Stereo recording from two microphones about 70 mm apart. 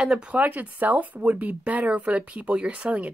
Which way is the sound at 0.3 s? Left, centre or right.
Right.